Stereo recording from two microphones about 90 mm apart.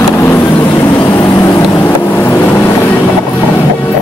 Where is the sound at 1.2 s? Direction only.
45° left (ahead or behind).